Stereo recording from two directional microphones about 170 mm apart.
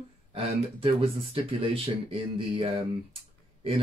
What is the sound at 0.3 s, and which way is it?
Speech, 35° right (ahead or behind).